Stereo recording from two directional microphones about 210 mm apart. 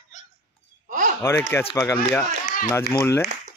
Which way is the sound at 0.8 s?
40° right (ahead or behind).